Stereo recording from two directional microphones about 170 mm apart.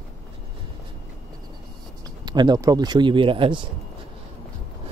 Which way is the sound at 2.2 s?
25° right (ahead or behind).